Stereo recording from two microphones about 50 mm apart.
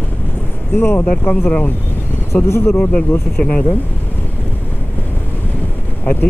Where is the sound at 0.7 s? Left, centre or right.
Left.